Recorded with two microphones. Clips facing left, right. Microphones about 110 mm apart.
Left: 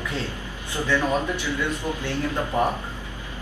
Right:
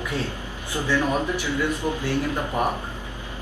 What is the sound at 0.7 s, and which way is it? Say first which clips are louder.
Speech: even; 15° right (ahead or behind).